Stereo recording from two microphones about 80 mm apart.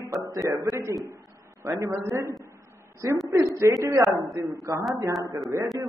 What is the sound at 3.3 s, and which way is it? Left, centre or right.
A man's voice, right.